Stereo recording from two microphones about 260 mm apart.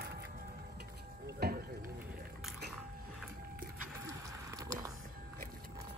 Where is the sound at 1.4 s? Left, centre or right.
Right.